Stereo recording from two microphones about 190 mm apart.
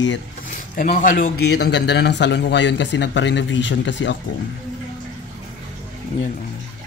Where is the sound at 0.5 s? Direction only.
40° left (ahead or behind).